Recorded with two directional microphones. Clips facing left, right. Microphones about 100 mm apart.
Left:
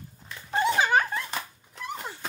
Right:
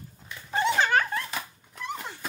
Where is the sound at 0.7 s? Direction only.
10° left (ahead or behind).